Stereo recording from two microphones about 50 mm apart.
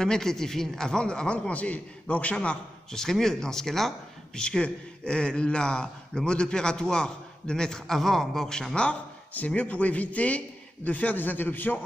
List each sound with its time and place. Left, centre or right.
0.0 s a man's voice: centre
3.0 s a man's voice: centre
4.4 s a man's voice: centre
8.7 s a man's voice: left